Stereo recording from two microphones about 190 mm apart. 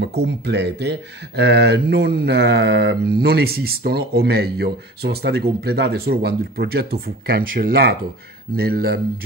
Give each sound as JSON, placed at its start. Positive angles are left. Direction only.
{"t": 0.0, "sound": "speech", "side_deg": -60}